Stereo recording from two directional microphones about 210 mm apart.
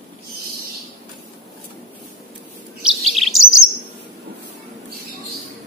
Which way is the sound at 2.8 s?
Centre (ahead or behind).